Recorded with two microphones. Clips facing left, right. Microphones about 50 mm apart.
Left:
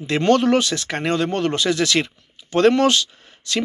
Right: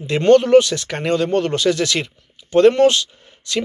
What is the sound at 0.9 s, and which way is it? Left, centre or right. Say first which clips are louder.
Speech: right 2 dB; left.